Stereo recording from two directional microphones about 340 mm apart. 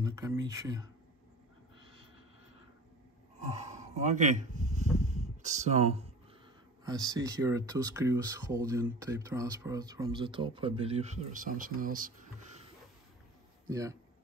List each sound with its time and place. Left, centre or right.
0.0 s speech: centre
3.5 s a sound: centre
6.8 s speech: centre
13.7 s speech: centre